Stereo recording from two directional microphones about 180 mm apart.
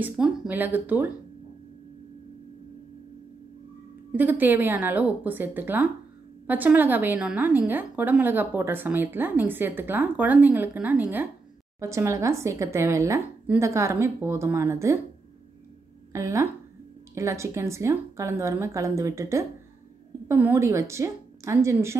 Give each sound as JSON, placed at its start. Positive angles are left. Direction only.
{"t": 0.0, "sound": "a woman's voice", "side_deg": -5}
{"t": 4.1, "sound": "a woman's voice", "side_deg": -10}
{"t": 16.1, "sound": "a woman's voice", "side_deg": -15}